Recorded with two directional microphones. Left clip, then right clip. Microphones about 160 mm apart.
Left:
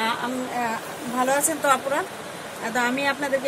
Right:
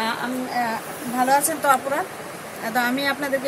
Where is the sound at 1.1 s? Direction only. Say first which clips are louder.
Right 3 dB; 20° left (ahead or behind).